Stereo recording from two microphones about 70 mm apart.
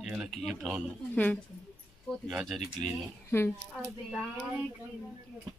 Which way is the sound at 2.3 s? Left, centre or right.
Centre.